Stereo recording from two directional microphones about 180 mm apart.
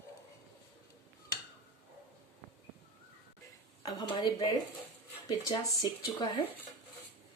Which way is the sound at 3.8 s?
20° left (ahead or behind).